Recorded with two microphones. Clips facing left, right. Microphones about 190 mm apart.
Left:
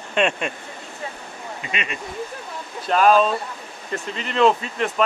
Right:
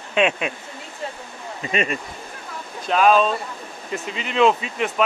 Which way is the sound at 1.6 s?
40° right (ahead or behind).